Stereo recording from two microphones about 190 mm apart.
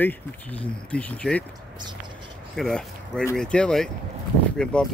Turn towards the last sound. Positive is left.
turn(degrees=5)  # may be behind; listen again after turning